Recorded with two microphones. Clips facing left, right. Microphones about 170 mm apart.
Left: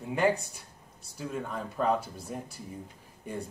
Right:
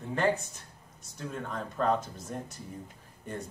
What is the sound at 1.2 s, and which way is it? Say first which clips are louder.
A man's voice: left 2 dB; 5° left (ahead or behind).